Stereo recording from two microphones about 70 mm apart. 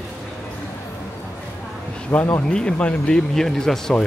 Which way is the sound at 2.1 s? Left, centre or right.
Left.